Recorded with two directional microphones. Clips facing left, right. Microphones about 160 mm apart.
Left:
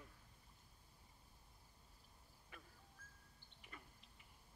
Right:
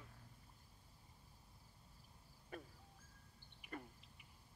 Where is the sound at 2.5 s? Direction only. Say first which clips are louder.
Right 10 dB; 40° right (ahead or behind).